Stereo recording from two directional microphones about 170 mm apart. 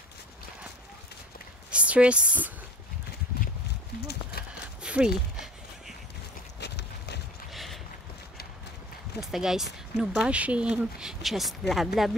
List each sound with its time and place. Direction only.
1.7 s speech: 5° right (ahead or behind)
4.1 s horse: 70° left (ahead or behind)
4.8 s a sound: 5° right (ahead or behind)
6.6 s clip-clop: 90° left
7.5 s boat: centre (ahead or behind)
9.2 s speech: centre (ahead or behind)